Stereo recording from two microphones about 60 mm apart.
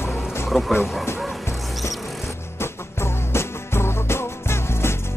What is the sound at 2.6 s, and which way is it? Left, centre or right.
Music, left.